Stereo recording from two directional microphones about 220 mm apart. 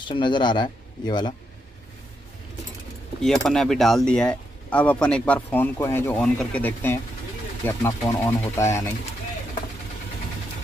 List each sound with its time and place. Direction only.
0.1 s speech: 20° left (ahead or behind)
3.2 s speech: centre (ahead or behind)